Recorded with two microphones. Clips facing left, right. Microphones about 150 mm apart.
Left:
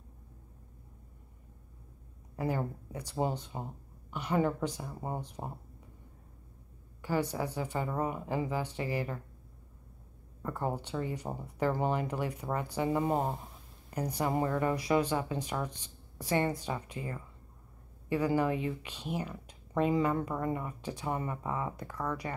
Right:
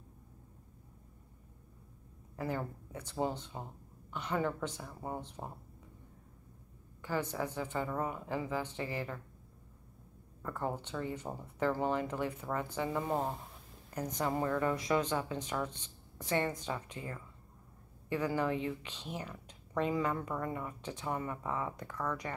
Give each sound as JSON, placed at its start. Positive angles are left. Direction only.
{"t": 2.3, "sound": "speech", "side_deg": 15}
{"t": 7.0, "sound": "speech", "side_deg": 10}
{"t": 10.4, "sound": "speech", "side_deg": 10}
{"t": 14.3, "sound": "speech", "side_deg": 20}
{"t": 18.1, "sound": "speech", "side_deg": 10}
{"t": 21.1, "sound": "speech", "side_deg": 20}
{"t": 21.4, "sound": "speech", "side_deg": 10}